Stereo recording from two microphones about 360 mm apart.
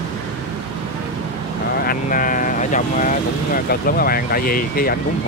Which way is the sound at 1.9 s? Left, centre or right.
Left.